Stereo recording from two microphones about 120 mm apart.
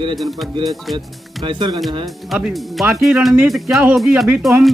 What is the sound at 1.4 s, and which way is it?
Speech, 45° right (ahead or behind).